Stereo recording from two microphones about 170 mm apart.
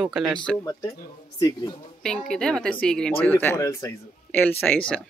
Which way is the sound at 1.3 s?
20° left (ahead or behind).